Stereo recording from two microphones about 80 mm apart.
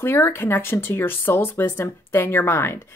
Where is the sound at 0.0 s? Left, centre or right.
Left.